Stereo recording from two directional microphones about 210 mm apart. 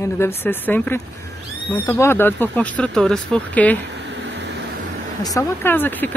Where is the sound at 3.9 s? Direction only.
55° right (ahead or behind).